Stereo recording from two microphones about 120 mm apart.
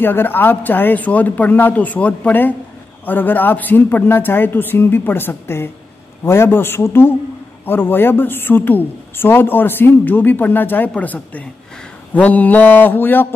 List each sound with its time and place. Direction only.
0.0 s a woman's voice: 15° left (ahead or behind)